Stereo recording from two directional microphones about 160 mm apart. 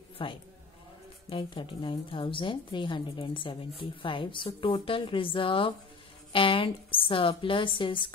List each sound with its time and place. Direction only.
0.2 s a woman's voice: 30° left (ahead or behind)